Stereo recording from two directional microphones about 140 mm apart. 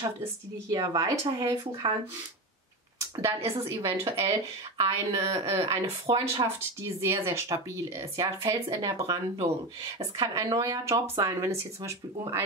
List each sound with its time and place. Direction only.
0.2 s speech: 25° right (ahead or behind)
3.5 s speech: 20° right (ahead or behind)
6.0 s speech: 40° right (ahead or behind)
6.4 s speech: 20° right (ahead or behind)